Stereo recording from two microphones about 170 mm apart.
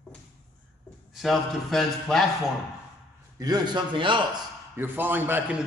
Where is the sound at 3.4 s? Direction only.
25° right (ahead or behind).